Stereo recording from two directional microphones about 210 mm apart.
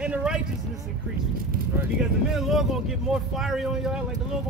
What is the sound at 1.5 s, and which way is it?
Speech, 45° right (ahead or behind).